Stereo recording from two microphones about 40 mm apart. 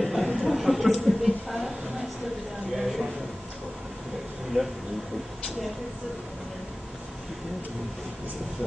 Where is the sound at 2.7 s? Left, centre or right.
Centre.